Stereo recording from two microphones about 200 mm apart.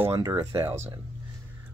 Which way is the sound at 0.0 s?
15° right (ahead or behind).